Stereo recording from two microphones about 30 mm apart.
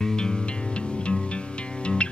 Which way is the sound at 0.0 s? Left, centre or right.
Left.